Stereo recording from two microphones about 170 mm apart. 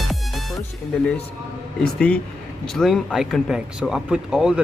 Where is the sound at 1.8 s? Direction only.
5° left (ahead or behind).